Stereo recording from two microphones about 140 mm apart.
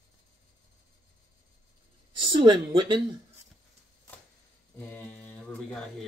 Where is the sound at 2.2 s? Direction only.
35° right (ahead or behind).